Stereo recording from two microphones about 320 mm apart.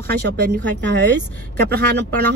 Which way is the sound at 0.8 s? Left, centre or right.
Right.